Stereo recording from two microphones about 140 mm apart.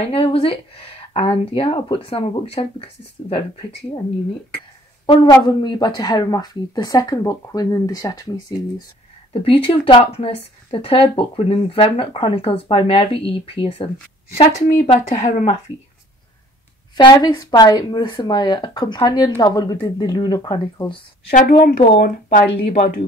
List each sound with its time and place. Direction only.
0.0 s speech: 40° left (ahead or behind)
5.0 s speech: 35° left (ahead or behind)
9.3 s a woman's voice: 40° left (ahead or behind)
14.9 s a woman's voice: 50° left (ahead or behind)
16.9 s speech: 30° left (ahead or behind)
21.3 s speech: 80° left